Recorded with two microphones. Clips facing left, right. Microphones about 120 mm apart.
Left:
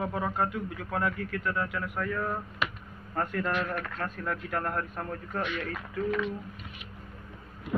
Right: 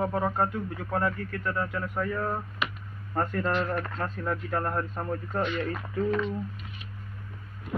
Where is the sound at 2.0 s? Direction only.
15° right (ahead or behind).